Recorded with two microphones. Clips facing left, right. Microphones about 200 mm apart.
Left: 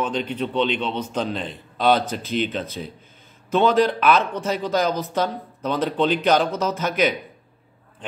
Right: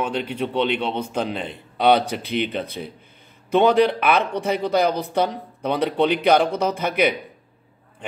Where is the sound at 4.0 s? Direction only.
60° right (ahead or behind).